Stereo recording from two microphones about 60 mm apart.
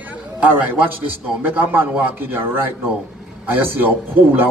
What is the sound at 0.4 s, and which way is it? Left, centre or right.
A man's voice, right.